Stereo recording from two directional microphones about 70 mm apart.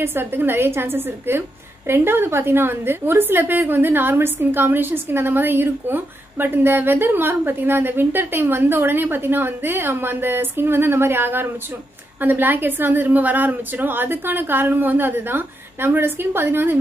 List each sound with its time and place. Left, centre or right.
0.0 s a woman's voice: right